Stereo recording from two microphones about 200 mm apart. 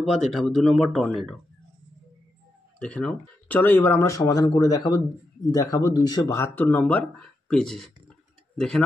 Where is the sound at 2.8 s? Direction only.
5° left (ahead or behind).